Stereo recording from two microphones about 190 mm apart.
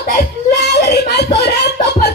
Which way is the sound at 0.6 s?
60° left (ahead or behind).